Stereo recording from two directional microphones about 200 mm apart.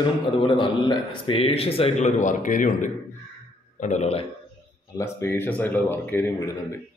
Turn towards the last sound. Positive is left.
turn(degrees=15)  # may be behind; listen again after turning